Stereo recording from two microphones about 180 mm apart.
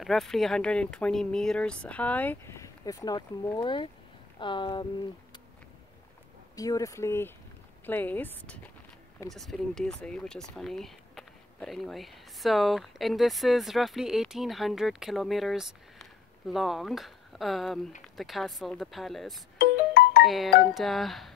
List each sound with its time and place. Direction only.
0.0 s speech: centre (ahead or behind); by 4.8 s 25° left (ahead or behind)
6.5 s speech: 20° left (ahead or behind); by 19.4 s centre (ahead or behind)
19.9 s ringtone: 60° left (ahead or behind)
20.2 s speech: centre (ahead or behind)